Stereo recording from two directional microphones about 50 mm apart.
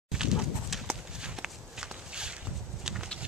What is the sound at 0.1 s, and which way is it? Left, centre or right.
Horse, centre.